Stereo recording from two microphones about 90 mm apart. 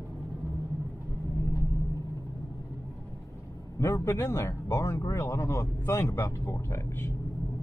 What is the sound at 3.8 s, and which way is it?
Speech, 30° left (ahead or behind).